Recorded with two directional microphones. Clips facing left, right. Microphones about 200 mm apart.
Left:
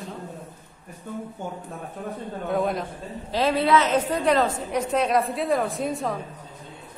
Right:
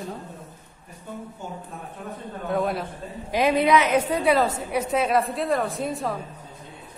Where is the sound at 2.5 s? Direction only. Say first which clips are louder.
Even; centre (ahead or behind).